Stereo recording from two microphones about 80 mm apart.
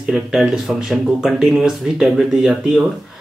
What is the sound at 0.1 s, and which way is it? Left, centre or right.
Speech, centre.